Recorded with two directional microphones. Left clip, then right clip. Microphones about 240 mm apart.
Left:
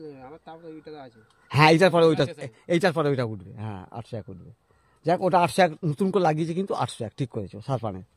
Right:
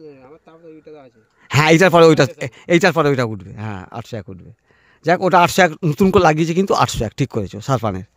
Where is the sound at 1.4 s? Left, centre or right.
Right.